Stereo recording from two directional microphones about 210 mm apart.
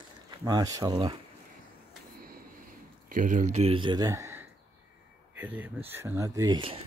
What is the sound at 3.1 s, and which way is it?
Speech, 40° right (ahead or behind).